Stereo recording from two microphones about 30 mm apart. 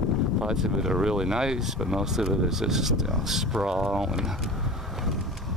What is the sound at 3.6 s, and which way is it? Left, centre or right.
Speech, right.